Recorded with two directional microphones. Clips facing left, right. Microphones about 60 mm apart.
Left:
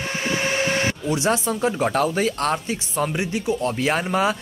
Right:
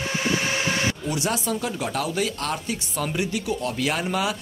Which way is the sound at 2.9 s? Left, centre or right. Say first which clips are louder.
Left 3 dB; left.